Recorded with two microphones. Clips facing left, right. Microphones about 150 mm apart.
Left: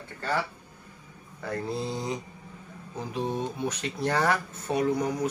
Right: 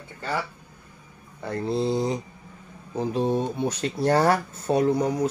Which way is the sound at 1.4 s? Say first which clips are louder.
Right 6 dB; 30° right (ahead or behind).